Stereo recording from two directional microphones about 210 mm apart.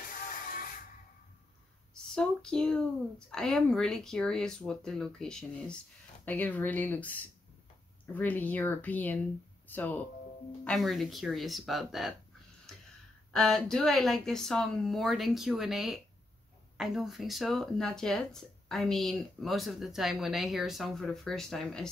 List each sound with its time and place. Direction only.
0.1 s music: 40° left (ahead or behind)
2.1 s a sound: 5° left (ahead or behind)
3.3 s speech: 5° left (ahead or behind)
13.3 s speech: centre (ahead or behind)